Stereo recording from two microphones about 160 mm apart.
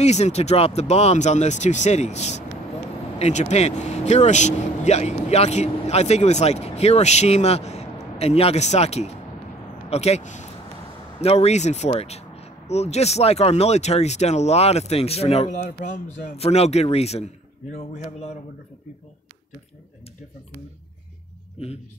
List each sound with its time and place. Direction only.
0.0 s speech: 45° left (ahead or behind)